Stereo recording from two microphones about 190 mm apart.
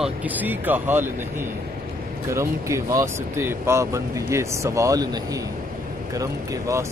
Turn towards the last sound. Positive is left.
turn(degrees=-15)  # may be behind; listen again after turning